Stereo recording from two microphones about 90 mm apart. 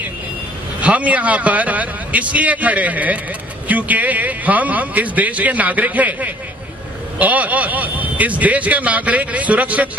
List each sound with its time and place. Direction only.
0.7 s speech: 15° right (ahead or behind)